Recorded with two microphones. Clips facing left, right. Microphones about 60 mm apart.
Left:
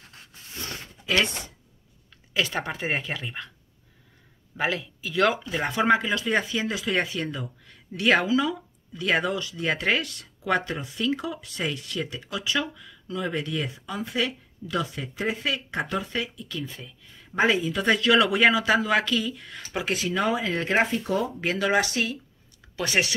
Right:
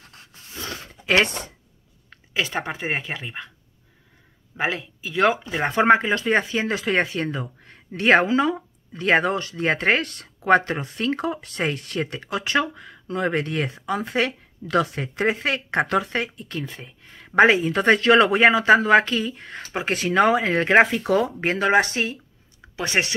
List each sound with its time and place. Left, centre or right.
1.0 s speech: right
2.3 s speech: right
4.6 s speech: centre
5.7 s speech: right
19.9 s speech: right
21.4 s speech: right